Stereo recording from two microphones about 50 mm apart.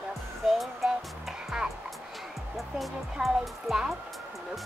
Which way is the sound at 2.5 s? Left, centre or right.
Centre.